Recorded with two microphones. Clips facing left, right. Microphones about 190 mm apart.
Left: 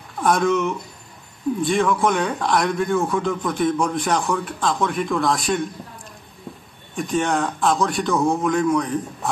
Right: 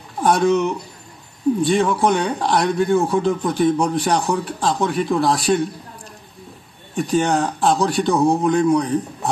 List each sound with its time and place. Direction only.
0.2 s speech: 30° right (ahead or behind)
7.0 s speech: 35° right (ahead or behind)